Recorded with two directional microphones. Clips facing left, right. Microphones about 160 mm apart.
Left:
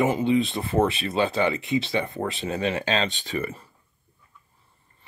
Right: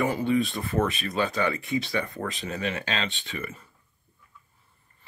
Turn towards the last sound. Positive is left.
turn(degrees=35)  # may be behind; listen again after turning